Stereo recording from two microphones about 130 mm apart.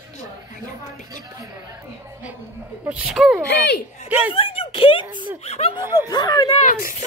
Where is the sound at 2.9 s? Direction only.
5° right (ahead or behind).